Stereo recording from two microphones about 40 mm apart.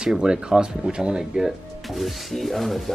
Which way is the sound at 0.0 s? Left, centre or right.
Centre.